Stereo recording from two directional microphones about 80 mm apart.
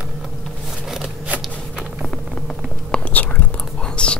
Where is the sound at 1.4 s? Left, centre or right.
Centre.